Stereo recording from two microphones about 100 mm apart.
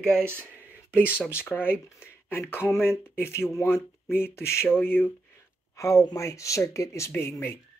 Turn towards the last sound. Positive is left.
turn(degrees=25)  # may be behind; listen again after turning